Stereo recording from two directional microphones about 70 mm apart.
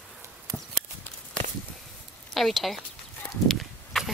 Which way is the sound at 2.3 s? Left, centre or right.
Centre.